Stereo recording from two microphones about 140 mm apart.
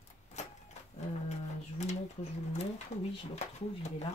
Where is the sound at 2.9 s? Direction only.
55° left (ahead or behind).